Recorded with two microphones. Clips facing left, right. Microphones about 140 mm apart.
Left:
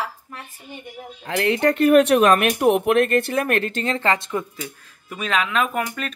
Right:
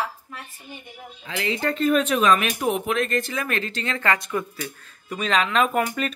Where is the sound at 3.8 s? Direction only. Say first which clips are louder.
Left 3 dB; 30° left (ahead or behind).